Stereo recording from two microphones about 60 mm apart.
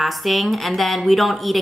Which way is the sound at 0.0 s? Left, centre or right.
Centre.